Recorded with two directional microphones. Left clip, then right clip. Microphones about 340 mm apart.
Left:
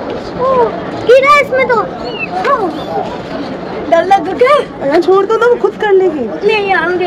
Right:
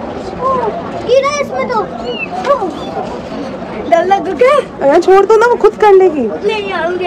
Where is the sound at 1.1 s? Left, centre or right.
Centre.